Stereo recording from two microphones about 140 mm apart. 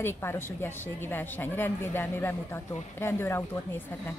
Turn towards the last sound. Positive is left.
turn(degrees=20)  # may be behind; listen again after turning